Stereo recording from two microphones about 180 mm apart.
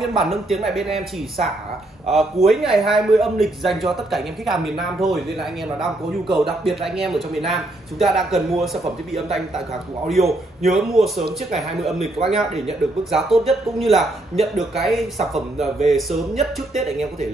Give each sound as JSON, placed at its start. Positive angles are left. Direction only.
{"t": 0.0, "sound": "a man's voice", "side_deg": 0}
{"t": 2.0, "sound": "a man's voice", "side_deg": 0}
{"t": 12.2, "sound": "a man's voice", "side_deg": -25}
{"t": 12.6, "sound": "a man's voice", "side_deg": 0}